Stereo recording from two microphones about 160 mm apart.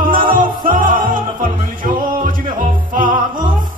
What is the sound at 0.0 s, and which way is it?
Music, 60° right (ahead or behind).